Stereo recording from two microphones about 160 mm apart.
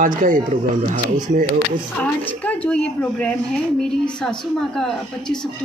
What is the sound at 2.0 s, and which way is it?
Speech, 10° left (ahead or behind).